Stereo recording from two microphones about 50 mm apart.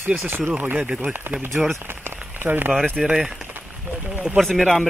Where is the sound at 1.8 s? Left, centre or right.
Right.